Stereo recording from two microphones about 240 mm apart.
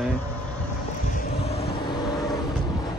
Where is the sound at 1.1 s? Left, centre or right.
Left.